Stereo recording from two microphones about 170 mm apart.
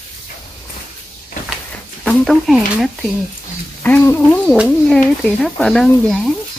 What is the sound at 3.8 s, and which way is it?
Speech, 10° left (ahead or behind).